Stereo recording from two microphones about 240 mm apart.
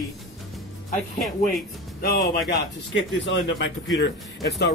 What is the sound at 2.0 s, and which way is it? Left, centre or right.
A man's voice, left.